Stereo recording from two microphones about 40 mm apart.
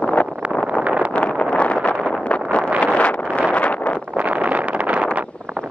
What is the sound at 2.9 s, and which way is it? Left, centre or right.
Vehicle, left.